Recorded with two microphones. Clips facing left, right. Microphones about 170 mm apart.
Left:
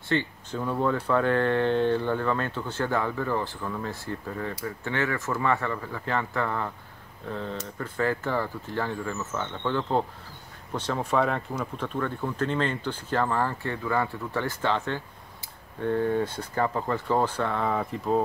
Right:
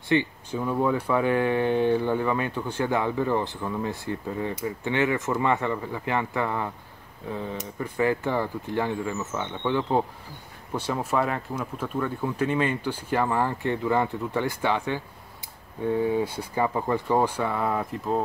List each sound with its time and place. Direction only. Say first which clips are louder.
0.1 s speech: right 4 dB; 15° right (ahead or behind)